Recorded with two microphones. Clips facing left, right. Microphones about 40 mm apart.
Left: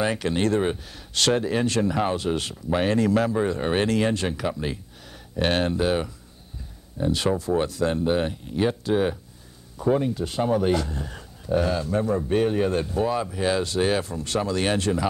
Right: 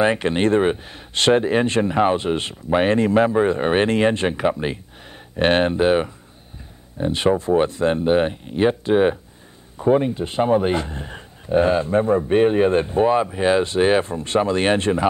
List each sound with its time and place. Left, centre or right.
0.0 s speech: right